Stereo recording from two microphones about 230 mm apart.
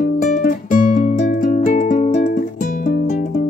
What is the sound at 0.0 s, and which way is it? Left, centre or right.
Music, left.